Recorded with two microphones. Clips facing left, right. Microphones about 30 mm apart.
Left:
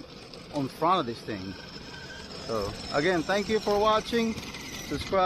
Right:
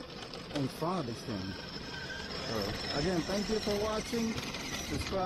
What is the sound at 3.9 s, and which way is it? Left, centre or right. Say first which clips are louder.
Speech: left 9 dB; left.